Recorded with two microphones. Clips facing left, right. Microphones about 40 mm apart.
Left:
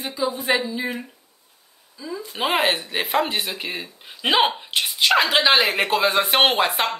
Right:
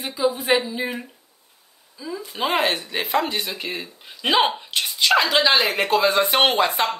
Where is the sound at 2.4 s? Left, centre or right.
Centre.